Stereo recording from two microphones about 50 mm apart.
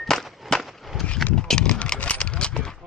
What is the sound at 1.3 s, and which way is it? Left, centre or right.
Horse, centre.